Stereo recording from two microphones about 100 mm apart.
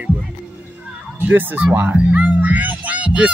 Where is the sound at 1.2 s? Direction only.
20° right (ahead or behind).